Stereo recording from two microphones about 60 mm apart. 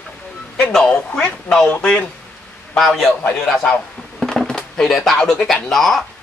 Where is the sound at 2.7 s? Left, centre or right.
Centre.